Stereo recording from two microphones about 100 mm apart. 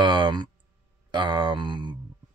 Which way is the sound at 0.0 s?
50° right (ahead or behind).